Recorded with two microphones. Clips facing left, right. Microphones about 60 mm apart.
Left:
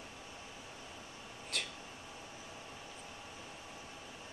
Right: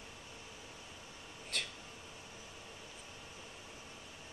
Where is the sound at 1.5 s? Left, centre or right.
Centre.